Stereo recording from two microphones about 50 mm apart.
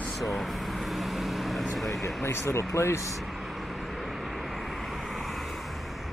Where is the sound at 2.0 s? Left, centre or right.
Left.